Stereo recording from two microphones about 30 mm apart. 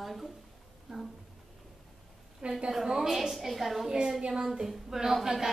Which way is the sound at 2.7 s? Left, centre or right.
Centre.